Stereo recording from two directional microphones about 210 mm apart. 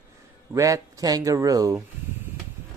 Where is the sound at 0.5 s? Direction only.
15° right (ahead or behind).